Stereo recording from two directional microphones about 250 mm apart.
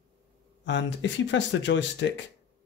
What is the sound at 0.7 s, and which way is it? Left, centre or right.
Speech, left.